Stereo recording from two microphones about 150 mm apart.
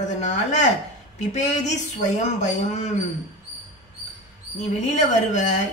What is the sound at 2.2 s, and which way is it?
Speech, 50° left (ahead or behind).